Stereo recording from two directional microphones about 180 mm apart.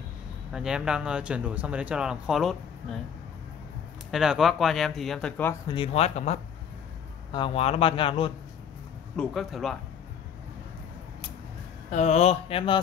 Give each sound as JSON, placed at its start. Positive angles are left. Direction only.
{"t": 0.5, "sound": "speech", "side_deg": -5}
{"t": 4.1, "sound": "speech", "side_deg": -5}
{"t": 5.7, "sound": "a man's voice", "side_deg": 30}
{"t": 9.1, "sound": "speech", "side_deg": 0}
{"t": 11.9, "sound": "speech", "side_deg": 40}